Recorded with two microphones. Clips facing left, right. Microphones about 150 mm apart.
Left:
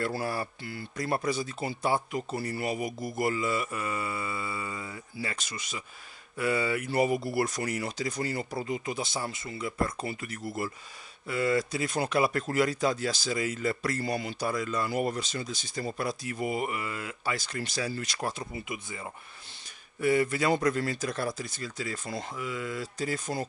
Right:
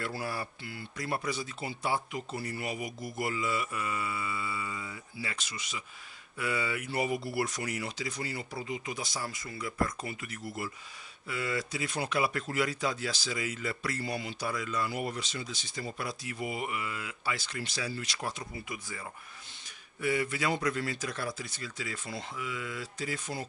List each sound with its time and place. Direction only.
0.0 s speech: 40° left (ahead or behind)
8.9 s speech: 25° left (ahead or behind); by 18.3 s 45° left (ahead or behind)
20.0 s speech: 40° left (ahead or behind)